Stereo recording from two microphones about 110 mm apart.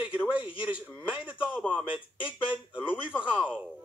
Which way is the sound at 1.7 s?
10° right (ahead or behind).